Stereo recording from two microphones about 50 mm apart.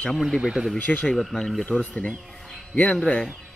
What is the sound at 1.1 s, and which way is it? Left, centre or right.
Speech, centre.